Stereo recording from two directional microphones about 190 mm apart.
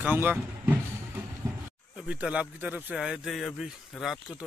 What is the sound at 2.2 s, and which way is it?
Speech, 5° right (ahead or behind).